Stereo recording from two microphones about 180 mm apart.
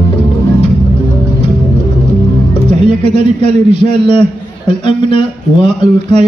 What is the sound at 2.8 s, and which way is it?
Speech, 30° left (ahead or behind).